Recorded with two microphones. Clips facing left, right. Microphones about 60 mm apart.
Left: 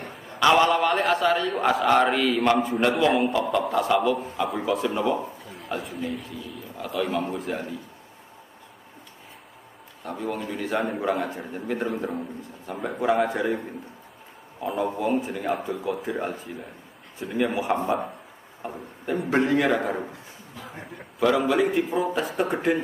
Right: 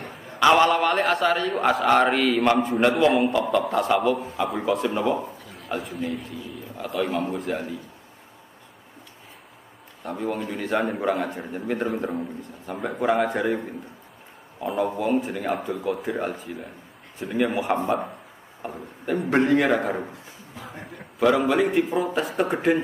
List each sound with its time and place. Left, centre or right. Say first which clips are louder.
0.5 s a man's voice: right 1 dB; centre
2.1 s a man's voice: right 2 dB; centre
2.4 s a man's voice: right 1 dB; centre
3.8 s a man's voice: right 1 dB; centre
4.4 s a man's voice: right 1 dB; centre
10.0 s a man's voice: right 2 dB; centre
14.6 s a man's voice: right 2 dB; centre
15.2 s a man's voice: right 1 dB; centre
15.5 s a man's voice: right 1 dB; centre
20.5 s a sound: right 1 dB; centre
21.2 s a man's voice: right 1 dB; centre
22.3 s speech: right 1 dB; right